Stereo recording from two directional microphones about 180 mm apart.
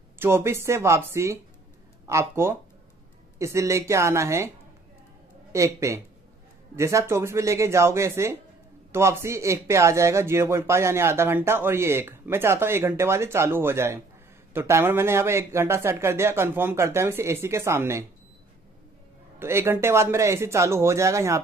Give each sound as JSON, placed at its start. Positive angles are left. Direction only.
{"t": 0.2, "sound": "speech", "side_deg": -15}
{"t": 5.5, "sound": "speech", "side_deg": -15}
{"t": 19.4, "sound": "speech", "side_deg": -15}